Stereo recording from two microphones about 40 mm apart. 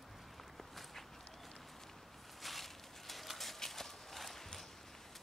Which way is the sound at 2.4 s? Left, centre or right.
Centre.